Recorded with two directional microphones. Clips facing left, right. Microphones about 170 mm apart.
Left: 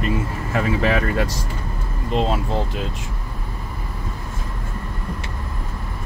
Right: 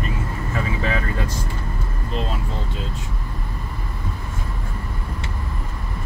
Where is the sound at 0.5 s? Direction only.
80° left.